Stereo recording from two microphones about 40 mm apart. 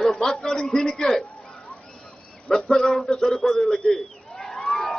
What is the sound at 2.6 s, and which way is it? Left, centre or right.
Speech, centre.